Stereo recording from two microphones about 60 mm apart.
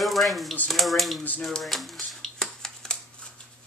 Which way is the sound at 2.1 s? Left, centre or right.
Centre.